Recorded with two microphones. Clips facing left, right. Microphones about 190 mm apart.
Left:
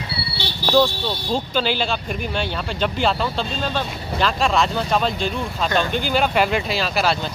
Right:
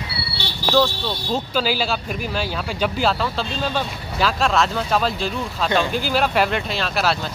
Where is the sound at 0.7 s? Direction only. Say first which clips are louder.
Left 1 dB; centre (ahead or behind).